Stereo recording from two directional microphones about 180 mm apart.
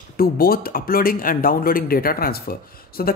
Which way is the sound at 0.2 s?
55° left (ahead or behind).